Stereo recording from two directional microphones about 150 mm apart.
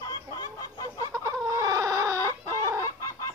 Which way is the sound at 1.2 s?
20° right (ahead or behind).